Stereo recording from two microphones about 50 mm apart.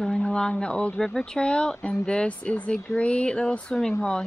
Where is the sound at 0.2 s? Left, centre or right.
Centre.